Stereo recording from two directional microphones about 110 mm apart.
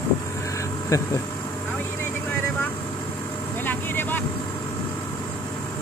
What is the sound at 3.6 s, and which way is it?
Vehicle, 15° left (ahead or behind).